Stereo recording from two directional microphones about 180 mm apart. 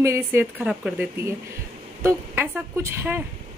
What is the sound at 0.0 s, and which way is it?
A woman's voice, 15° right (ahead or behind).